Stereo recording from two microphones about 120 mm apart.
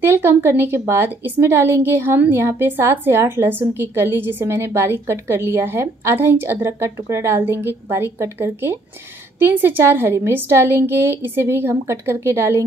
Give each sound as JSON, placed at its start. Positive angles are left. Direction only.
{"t": 0.0, "sound": "a woman's voice", "side_deg": -20}